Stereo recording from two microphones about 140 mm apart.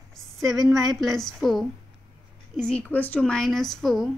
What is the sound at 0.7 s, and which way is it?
A woman's voice, centre (ahead or behind).